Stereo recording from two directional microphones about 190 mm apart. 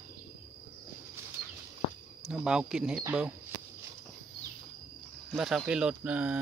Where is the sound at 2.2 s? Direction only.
5° right (ahead or behind).